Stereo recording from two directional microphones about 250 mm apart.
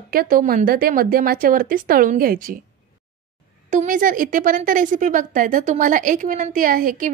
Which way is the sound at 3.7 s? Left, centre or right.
Right.